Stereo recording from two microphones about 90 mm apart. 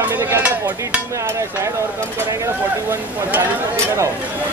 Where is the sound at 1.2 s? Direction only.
35° right (ahead or behind).